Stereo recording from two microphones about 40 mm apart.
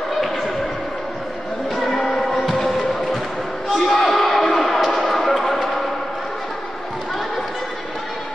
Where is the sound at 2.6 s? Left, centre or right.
Centre.